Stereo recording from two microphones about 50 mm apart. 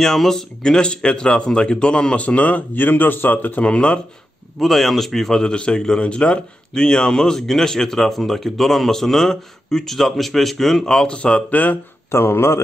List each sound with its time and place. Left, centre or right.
0.0 s a man's voice: centre; by 2.6 s left
2.7 s a man's voice: left
3.6 s speech: left
4.6 s a man's voice: centre
11.1 s speech: left
11.5 s a man's voice: left
12.1 s speech: left